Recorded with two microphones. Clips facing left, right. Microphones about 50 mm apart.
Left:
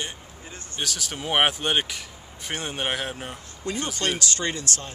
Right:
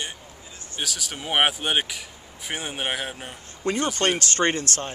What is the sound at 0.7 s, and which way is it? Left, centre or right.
Speech, centre.